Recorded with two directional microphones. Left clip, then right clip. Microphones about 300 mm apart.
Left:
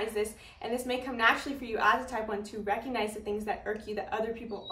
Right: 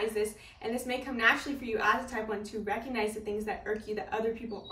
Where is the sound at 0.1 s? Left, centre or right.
Centre.